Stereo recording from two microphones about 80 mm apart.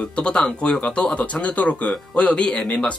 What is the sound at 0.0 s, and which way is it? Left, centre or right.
Speech, centre.